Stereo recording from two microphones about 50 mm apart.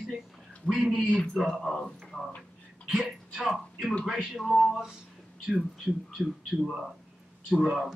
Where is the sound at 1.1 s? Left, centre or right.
Centre.